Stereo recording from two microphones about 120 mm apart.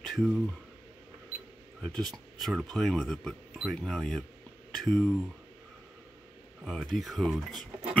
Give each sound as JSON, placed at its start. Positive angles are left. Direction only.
{"t": 0.0, "sound": "a sound", "side_deg": 0}
{"t": 1.8, "sound": "speech", "side_deg": 5}
{"t": 6.6, "sound": "speech", "side_deg": 0}